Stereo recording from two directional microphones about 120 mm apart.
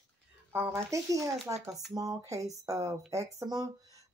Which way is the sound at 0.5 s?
20° right (ahead or behind).